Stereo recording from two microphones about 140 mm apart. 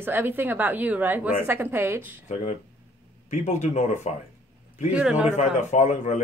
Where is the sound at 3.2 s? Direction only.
55° left (ahead or behind).